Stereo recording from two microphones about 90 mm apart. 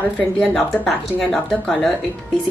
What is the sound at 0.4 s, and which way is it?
Speech, 5° left (ahead or behind).